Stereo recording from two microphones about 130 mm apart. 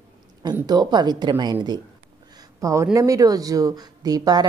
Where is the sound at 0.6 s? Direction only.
35° right (ahead or behind).